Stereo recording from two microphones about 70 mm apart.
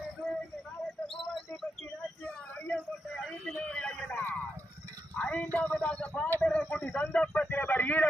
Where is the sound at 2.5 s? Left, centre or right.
Centre.